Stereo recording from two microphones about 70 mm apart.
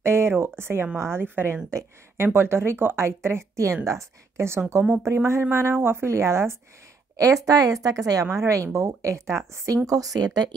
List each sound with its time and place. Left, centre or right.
0.0 s speech: right
7.2 s a woman's voice: right
9.8 s a woman's voice: right